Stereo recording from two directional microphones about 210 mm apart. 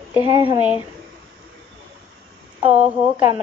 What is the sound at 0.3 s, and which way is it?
Speech, 25° right (ahead or behind).